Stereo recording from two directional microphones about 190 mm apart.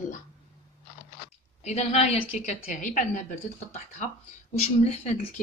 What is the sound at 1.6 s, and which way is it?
Speech, 35° left (ahead or behind).